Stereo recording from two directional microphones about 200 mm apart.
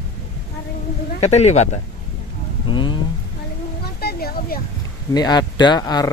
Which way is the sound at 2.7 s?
25° left (ahead or behind).